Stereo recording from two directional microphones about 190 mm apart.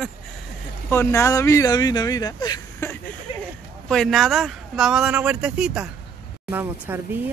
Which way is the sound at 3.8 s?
Centre (ahead or behind).